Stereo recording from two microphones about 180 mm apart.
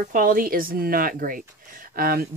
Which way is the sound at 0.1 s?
50° right (ahead or behind).